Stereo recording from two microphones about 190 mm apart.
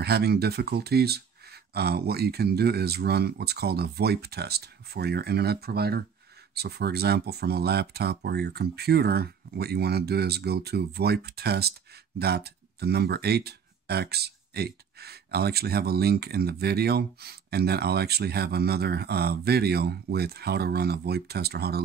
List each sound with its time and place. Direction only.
0.0 s speech: 55° right (ahead or behind)